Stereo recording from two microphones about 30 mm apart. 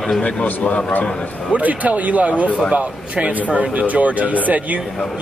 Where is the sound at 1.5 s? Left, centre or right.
Right.